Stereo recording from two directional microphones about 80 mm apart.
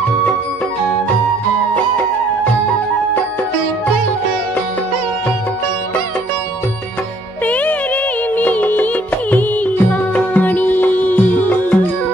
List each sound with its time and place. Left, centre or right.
7.4 s music: centre
10.1 s music: centre